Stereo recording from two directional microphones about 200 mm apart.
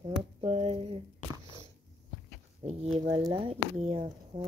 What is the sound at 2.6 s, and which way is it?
Speech, 25° right (ahead or behind).